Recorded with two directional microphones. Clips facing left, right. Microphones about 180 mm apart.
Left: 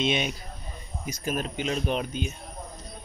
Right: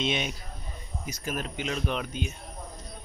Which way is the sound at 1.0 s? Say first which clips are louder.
Left 4 dB; 20° left (ahead or behind).